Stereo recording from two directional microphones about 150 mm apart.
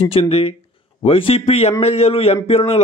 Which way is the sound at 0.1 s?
40° left (ahead or behind).